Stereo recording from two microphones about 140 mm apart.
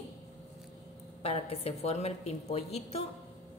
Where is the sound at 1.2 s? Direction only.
45° left (ahead or behind).